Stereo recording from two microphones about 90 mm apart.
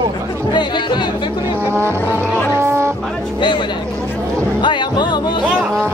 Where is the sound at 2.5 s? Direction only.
30° right (ahead or behind).